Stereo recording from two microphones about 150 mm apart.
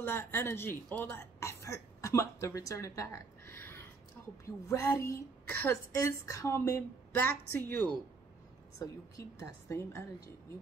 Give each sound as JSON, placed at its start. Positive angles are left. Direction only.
{"t": 0.0, "sound": "a woman's voice", "side_deg": 15}